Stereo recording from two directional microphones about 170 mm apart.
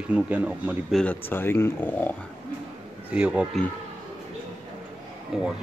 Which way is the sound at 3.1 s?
5° right (ahead or behind).